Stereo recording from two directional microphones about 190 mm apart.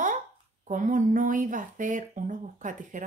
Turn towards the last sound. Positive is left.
turn(degrees=-40)  # may be behind; listen again after turning